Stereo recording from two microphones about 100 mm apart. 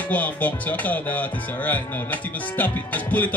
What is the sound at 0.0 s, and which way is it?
Speech, 15° left (ahead or behind).